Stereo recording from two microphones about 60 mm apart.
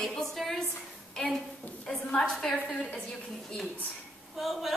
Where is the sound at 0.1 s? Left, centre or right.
Centre.